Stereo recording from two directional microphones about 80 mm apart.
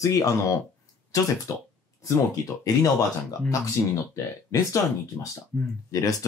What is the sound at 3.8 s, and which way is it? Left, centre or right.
Speech, left.